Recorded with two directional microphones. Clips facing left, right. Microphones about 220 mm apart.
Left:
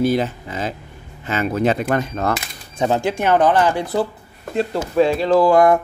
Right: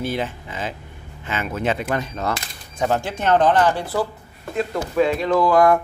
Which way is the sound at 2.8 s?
15° left (ahead or behind).